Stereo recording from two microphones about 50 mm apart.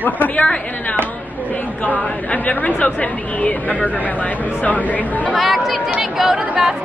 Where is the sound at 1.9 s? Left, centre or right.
Left.